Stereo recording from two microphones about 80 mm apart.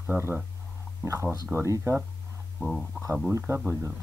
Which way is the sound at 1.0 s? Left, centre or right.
Right.